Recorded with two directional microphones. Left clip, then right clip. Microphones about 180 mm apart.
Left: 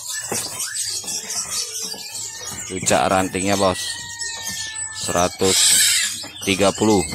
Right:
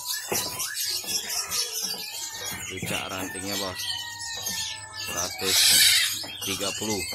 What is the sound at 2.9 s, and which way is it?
Speech, 55° left (ahead or behind).